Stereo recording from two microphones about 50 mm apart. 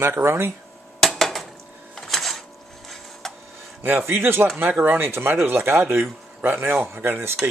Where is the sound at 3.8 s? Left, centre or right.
Right.